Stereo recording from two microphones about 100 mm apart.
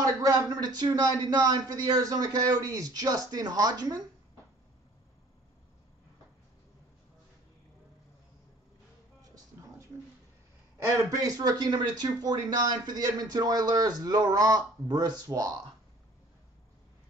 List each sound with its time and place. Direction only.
0.0 s speech: 40° right (ahead or behind)
9.3 s a sound: 30° right (ahead or behind)
11.0 s speech: 40° right (ahead or behind)